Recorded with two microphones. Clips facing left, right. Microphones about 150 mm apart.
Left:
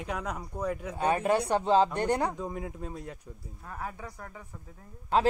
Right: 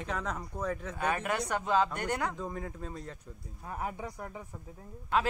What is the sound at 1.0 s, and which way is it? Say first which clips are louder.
A man's voice: left 7 dB; 30° left (ahead or behind).